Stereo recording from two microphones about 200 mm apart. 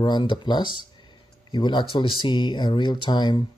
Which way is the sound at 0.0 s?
25° left (ahead or behind).